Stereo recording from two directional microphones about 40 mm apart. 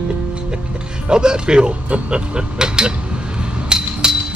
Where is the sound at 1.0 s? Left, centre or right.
Right.